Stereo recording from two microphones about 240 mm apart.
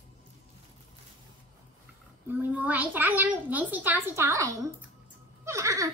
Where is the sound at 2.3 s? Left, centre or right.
Centre.